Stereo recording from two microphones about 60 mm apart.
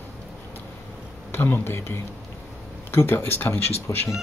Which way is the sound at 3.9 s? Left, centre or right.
Left.